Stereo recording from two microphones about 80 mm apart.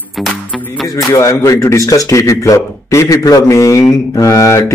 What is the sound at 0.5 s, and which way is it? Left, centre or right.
Music, centre.